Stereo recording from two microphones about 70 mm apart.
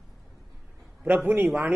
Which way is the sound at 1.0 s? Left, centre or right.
Right.